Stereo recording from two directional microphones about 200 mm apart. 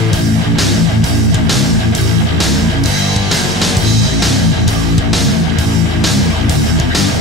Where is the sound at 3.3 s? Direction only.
Centre (ahead or behind).